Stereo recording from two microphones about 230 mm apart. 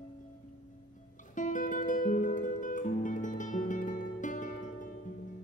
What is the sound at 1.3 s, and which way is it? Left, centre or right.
Music, left.